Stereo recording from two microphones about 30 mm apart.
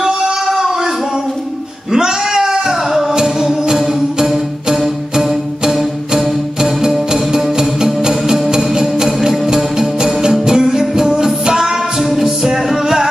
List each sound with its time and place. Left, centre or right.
1.9 s a sound: centre
3.1 s music: centre
6.1 s music: centre
12.0 s music: centre